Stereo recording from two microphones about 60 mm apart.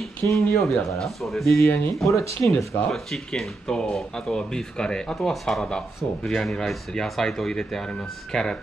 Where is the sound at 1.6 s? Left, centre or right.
Left.